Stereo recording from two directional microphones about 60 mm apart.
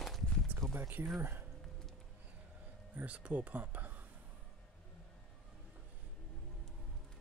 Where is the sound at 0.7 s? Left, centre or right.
Right.